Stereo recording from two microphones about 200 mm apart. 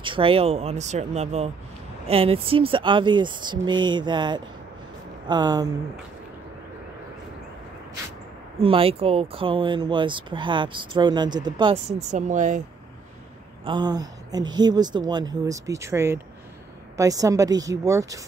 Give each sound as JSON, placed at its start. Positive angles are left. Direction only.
{"t": 0.0, "sound": "speech", "side_deg": -25}
{"t": 8.5, "sound": "speech", "side_deg": -30}
{"t": 12.0, "sound": "speech", "side_deg": -35}
{"t": 13.7, "sound": "speech", "side_deg": -20}